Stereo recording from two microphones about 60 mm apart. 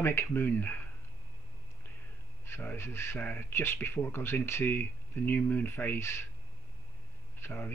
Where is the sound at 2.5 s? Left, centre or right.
Left.